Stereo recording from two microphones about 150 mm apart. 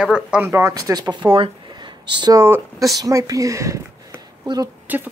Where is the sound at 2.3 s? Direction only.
20° right (ahead or behind).